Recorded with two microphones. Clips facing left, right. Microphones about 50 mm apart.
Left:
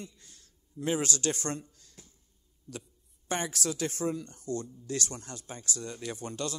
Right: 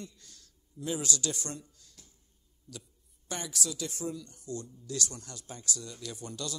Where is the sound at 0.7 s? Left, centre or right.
Left.